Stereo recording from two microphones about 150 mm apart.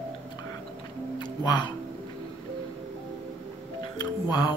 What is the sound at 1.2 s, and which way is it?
Music, 30° left (ahead or behind).